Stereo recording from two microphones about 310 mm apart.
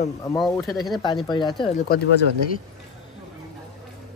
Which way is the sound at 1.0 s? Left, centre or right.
Centre.